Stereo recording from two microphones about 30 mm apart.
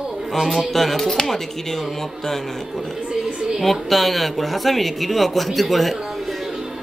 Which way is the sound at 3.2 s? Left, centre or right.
Right.